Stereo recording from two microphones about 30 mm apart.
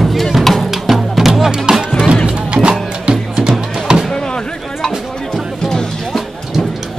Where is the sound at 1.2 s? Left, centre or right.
Centre.